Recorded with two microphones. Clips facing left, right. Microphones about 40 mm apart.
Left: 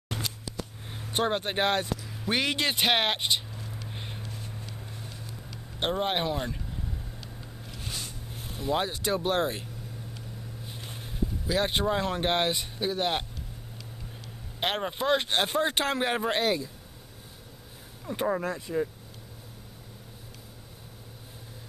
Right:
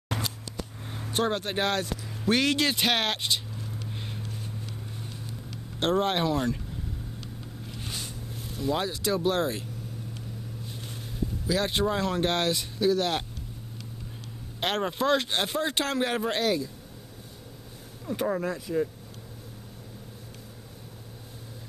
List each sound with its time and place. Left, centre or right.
1.1 s speech: left
1.9 s speech: centre
3.9 s a sound: centre
5.8 s speech: centre
8.4 s vehicle: left
8.8 s speech: left
10.8 s vehicle: left
12.0 s speech: left
14.6 s speech: centre
15.3 s speech: left
18.0 s speech: centre